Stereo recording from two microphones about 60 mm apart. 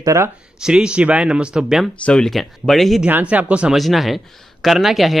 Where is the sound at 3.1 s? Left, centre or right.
Right.